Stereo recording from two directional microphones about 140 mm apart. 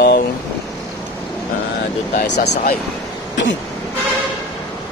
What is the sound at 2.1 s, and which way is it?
Speech, 90° left.